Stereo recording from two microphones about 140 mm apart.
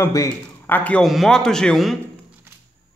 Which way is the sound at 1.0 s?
Centre (ahead or behind).